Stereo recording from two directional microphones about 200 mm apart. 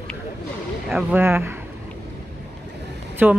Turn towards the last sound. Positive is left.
turn(degrees=-10)  # may be behind; listen again after turning